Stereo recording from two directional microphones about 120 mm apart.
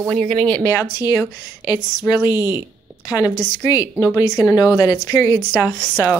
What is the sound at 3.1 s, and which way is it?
A woman's voice, 30° left (ahead or behind).